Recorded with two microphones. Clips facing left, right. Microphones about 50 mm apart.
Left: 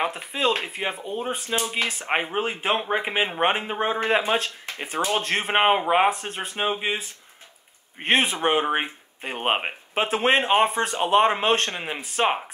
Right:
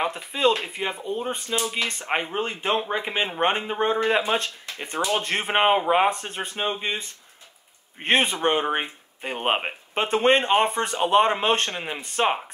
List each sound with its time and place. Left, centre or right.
0.6 s speech: centre
1.5 s speech: centre
1.9 s speech: centre